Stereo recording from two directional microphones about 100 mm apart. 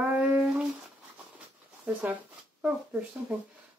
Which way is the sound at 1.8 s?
15° right (ahead or behind).